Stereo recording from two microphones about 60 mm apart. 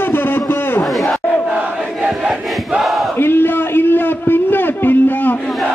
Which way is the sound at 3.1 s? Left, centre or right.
Left.